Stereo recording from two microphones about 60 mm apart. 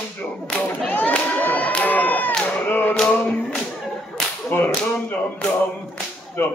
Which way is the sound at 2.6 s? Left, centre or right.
Left.